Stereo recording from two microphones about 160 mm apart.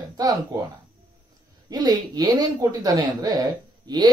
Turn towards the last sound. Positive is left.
turn(degrees=-25)  # may be behind; listen again after turning